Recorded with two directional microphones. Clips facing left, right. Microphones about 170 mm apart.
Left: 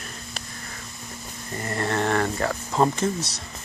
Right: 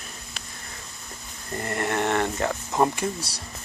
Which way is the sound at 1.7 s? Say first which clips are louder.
Left 1 dB; 20° right (ahead or behind).